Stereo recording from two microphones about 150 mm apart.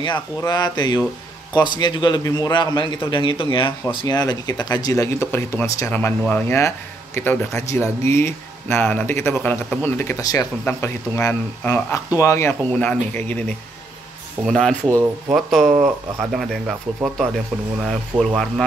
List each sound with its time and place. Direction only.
0.4 s speech: 30° left (ahead or behind)
10.6 s speech: 10° left (ahead or behind)
14.9 s speech: 20° right (ahead or behind)
15.3 s speech: centre (ahead or behind)